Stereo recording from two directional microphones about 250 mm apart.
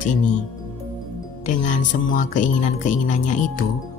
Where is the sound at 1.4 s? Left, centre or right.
Left.